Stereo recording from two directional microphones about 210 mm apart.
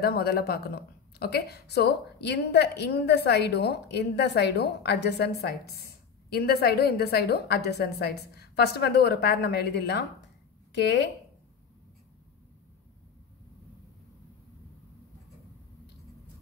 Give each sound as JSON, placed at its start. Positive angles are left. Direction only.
{"t": 0.0, "sound": "a woman's voice", "side_deg": 50}